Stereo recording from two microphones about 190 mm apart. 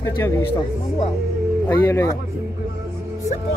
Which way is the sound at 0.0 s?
15° left (ahead or behind).